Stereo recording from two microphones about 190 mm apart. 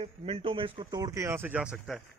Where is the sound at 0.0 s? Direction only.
30° right (ahead or behind).